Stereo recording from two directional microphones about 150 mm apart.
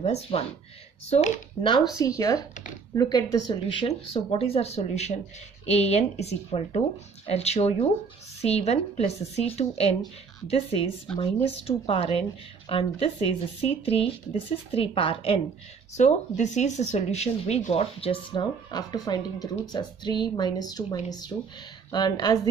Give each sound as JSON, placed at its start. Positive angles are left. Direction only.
{"t": 0.0, "sound": "speech", "side_deg": 45}
{"t": 2.0, "sound": "speech", "side_deg": 20}
{"t": 16.0, "sound": "speech", "side_deg": 50}
{"t": 18.3, "sound": "speech", "side_deg": 25}